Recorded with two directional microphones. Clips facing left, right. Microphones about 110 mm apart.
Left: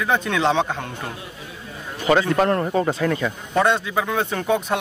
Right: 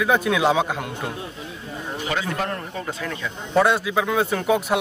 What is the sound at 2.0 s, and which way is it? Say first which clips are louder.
A man's voice: left 9 dB; 50° left (ahead or behind).